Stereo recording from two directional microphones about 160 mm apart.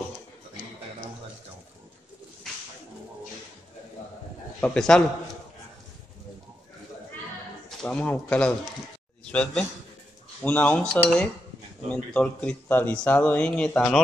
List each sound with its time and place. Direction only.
4.6 s a man's voice: 5° left (ahead or behind)
7.8 s speech: 10° left (ahead or behind)